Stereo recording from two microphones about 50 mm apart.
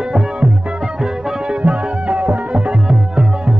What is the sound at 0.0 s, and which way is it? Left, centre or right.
Music, centre.